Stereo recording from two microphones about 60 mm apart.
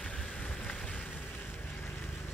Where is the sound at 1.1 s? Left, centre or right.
Left.